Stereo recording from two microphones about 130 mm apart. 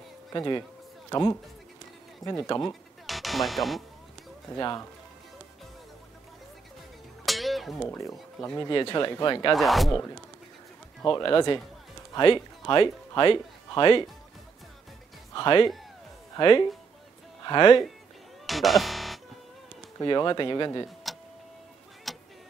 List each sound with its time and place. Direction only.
0.3 s speech: 30° left (ahead or behind)
1.1 s speech: 20° left (ahead or behind)
2.7 s music: centre (ahead or behind)
4.6 s speech: 25° left (ahead or behind)
7.2 s music: centre (ahead or behind)
8.0 s speech: 25° left (ahead or behind)
9.5 s speech: centre (ahead or behind)
11.1 s speech: 35° left (ahead or behind)
15.3 s speech: 35° left (ahead or behind)
18.5 s music: centre (ahead or behind)
20.0 s speech: 30° left (ahead or behind)
21.0 s tick-tock: centre (ahead or behind)
22.1 s vehicle: centre (ahead or behind)